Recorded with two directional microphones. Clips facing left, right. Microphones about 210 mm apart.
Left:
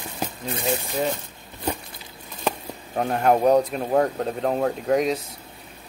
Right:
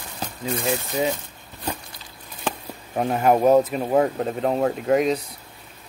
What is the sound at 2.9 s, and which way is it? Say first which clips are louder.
Speech: right 1 dB; 5° right (ahead or behind).